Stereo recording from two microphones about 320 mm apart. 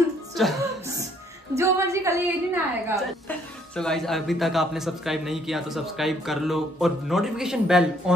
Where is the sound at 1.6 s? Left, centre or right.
Centre.